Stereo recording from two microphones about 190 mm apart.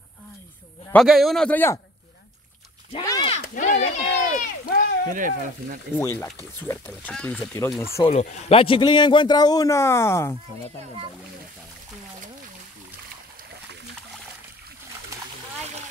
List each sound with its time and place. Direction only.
0.9 s a man's voice: centre (ahead or behind)
3.1 s a sound: 25° left (ahead or behind)
3.3 s a sound: 40° left (ahead or behind)
5.1 s speech: 45° right (ahead or behind)
5.9 s speech: 10° left (ahead or behind)
8.1 s a man's voice: 35° left (ahead or behind); by 10.3 s 15° left (ahead or behind)